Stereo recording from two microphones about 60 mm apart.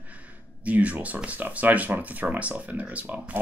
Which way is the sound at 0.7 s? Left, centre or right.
Right.